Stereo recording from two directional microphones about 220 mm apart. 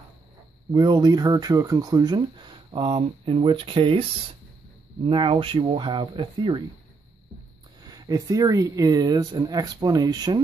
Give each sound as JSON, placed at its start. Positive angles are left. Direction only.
{"t": 0.7, "sound": "speech", "side_deg": -20}
{"t": 7.8, "sound": "speech", "side_deg": -15}